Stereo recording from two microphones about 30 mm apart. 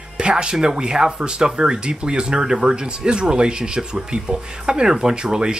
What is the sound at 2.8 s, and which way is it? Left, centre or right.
Speech, right.